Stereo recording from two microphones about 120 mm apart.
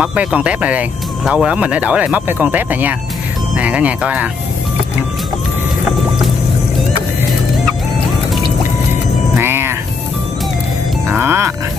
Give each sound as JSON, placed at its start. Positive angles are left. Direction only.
{"t": 0.0, "sound": "speech", "side_deg": -10}
{"t": 9.3, "sound": "music", "side_deg": -20}
{"t": 11.1, "sound": "speech", "side_deg": -20}